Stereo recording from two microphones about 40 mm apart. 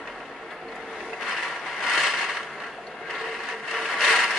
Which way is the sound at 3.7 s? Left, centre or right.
Centre.